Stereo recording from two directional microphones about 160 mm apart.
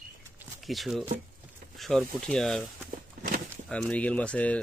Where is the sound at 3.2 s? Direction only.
55° right (ahead or behind).